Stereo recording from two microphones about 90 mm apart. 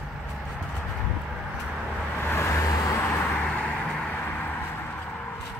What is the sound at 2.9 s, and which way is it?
Vehicle, 20° left (ahead or behind).